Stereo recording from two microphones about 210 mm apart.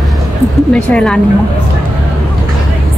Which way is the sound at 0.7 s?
5° left (ahead or behind).